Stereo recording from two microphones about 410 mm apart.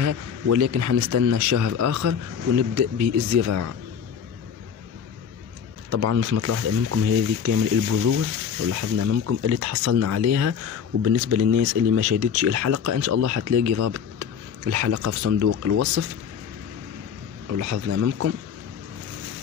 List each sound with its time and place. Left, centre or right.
0.0 s speech: right
5.9 s speech: right
17.6 s speech: right